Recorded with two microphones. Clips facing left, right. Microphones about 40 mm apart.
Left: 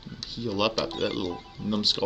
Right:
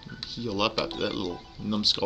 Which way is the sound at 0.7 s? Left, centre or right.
Centre.